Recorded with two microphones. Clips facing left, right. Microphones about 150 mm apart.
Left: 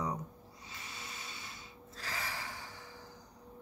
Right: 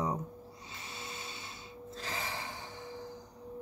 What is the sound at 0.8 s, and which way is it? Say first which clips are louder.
Vacuum cleaner: right 4 dB; 25° right (ahead or behind).